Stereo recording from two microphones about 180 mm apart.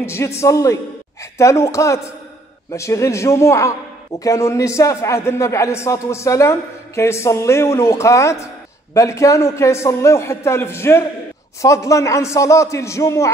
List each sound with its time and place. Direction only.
0.0 s a man's voice: 15° left (ahead or behind)